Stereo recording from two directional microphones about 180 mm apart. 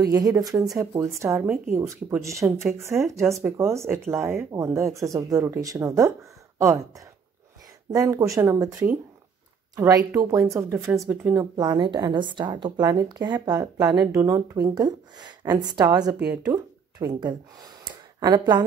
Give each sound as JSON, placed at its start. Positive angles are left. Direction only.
{"t": 0.0, "sound": "a woman's voice", "side_deg": -20}
{"t": 7.9, "sound": "a woman's voice", "side_deg": -20}